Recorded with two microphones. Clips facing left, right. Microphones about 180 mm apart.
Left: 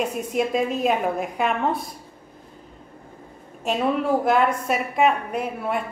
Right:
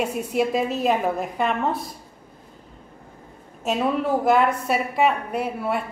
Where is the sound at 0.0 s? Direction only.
5° right (ahead or behind).